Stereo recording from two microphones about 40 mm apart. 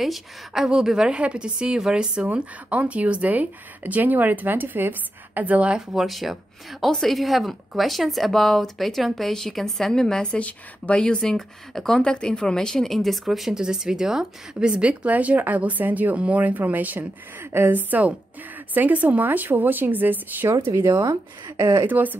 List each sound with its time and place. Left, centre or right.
0.0 s a woman's voice: centre
0.7 s a woman's voice: centre
2.2 s speech: right
5.4 s speech: right
6.0 s a woman's voice: centre
10.2 s speech: left
11.2 s speech: centre
12.0 s speech: left; by 13.6 s centre
13.6 s a woman's voice: centre
15.0 s speech: right
20.4 s speech: right
21.8 s speech: right